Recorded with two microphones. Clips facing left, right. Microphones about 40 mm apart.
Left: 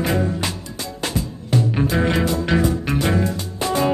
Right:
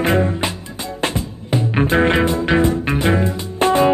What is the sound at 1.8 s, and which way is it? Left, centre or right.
Music, right.